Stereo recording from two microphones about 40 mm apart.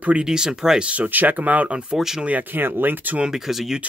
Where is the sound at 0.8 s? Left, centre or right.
Right.